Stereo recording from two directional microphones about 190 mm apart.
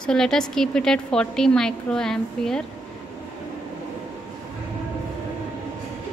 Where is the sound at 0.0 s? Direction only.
5° left (ahead or behind).